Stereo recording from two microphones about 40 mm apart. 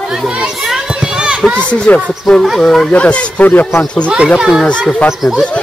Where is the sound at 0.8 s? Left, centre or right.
Right.